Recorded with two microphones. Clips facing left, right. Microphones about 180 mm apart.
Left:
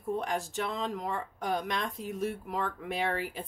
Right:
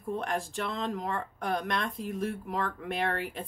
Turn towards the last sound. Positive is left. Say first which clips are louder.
# right 1 dB
turn(degrees=5)  # may be behind; listen again after turning